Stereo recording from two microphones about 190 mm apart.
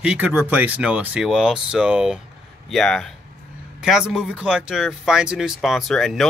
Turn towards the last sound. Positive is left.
turn(degrees=0)  # may be behind; listen again after turning